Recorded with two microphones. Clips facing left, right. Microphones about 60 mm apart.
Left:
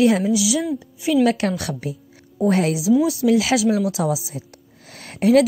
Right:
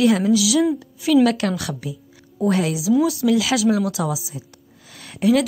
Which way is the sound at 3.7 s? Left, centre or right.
Right.